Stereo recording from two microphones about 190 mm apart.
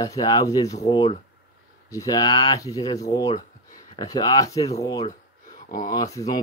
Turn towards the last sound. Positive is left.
turn(degrees=15)  # may be behind; listen again after turning